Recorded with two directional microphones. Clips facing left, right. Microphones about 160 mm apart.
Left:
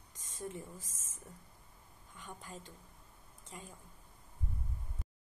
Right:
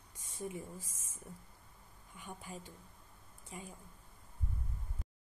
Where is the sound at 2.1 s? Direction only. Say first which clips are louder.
Right 1 dB; 10° right (ahead or behind).